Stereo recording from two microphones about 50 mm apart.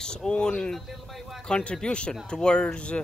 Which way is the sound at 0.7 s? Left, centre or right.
Centre.